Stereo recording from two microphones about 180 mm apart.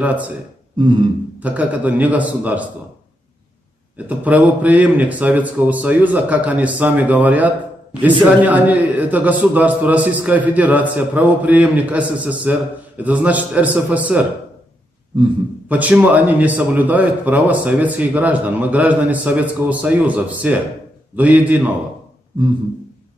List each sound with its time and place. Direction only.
0.0 s a man's voice: 10° right (ahead or behind)
0.7 s a sound: 25° right (ahead or behind)
1.4 s a man's voice: 10° right (ahead or behind)
4.1 s a man's voice: 10° right (ahead or behind)
15.7 s a man's voice: 10° right (ahead or behind)